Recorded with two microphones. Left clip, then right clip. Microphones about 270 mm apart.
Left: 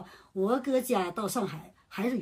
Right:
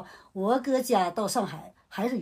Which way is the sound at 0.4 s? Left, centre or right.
Centre.